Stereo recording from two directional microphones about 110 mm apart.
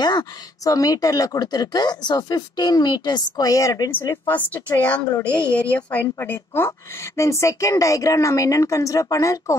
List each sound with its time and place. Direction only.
0.0 s a woman's voice: 40° left (ahead or behind)